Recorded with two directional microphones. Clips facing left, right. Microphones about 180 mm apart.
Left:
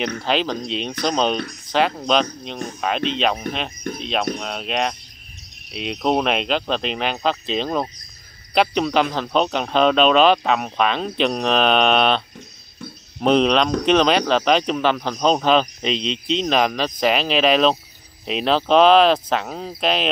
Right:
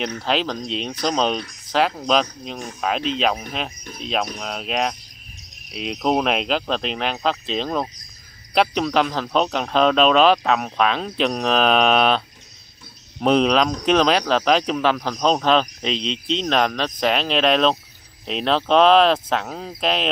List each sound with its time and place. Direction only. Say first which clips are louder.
0.0 s speech: left 1 dB; centre (ahead or behind)
13.2 s speech: left 1 dB; centre (ahead or behind)